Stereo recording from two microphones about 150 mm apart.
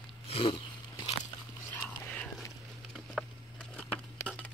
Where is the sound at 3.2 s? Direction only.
Centre (ahead or behind).